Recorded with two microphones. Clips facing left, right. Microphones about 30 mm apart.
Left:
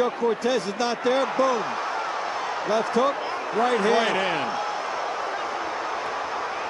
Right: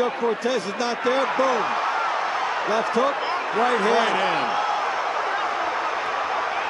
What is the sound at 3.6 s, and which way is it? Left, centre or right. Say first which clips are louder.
Speech: right 1 dB; centre.